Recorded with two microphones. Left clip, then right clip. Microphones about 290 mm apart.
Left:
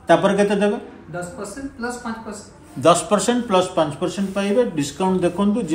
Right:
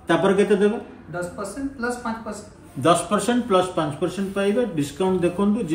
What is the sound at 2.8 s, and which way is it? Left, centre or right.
A man's voice, left.